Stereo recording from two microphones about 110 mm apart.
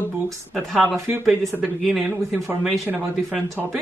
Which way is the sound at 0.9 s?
25° right (ahead or behind).